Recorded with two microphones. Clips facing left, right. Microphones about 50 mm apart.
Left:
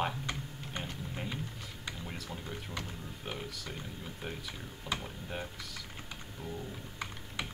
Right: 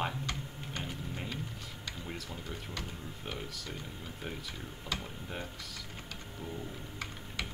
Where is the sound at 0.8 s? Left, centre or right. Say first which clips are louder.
Even; centre.